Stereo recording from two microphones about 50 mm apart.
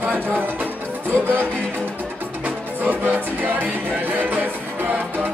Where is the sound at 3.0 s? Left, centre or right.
Right.